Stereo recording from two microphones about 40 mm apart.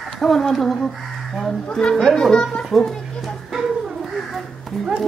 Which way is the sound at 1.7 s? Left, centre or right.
Left.